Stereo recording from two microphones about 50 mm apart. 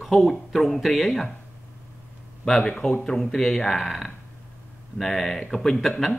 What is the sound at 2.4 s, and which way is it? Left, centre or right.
Speech, centre.